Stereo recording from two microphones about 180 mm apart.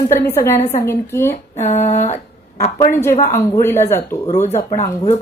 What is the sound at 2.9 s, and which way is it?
A woman's voice, 15° left (ahead or behind).